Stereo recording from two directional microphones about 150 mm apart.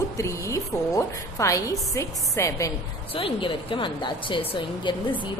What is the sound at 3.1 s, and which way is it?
A woman's voice, 35° left (ahead or behind).